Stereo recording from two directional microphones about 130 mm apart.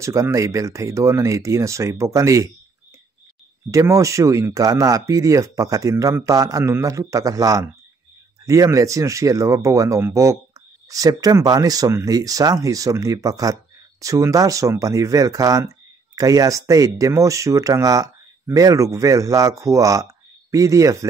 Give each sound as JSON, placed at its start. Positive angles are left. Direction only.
{"t": 0.0, "sound": "speech", "side_deg": -25}
{"t": 3.7, "sound": "speech", "side_deg": -25}